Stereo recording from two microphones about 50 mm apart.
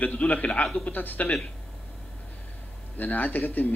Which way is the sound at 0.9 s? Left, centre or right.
Left.